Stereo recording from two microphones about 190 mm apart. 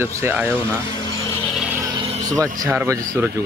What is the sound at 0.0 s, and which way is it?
Speech, 10° right (ahead or behind).